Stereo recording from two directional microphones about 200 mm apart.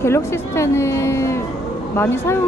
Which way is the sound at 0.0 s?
15° left (ahead or behind).